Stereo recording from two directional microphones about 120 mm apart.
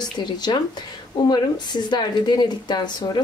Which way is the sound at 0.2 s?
40° left (ahead or behind).